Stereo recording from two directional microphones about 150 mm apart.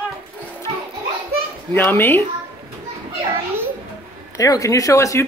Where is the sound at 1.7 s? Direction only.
15° left (ahead or behind).